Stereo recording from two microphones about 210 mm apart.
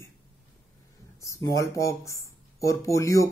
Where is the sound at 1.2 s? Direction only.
15° left (ahead or behind).